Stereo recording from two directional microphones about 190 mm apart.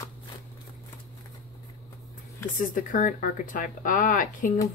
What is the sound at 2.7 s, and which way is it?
Speech, 45° left (ahead or behind).